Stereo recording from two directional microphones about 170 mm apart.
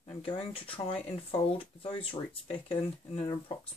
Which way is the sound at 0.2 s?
30° left (ahead or behind).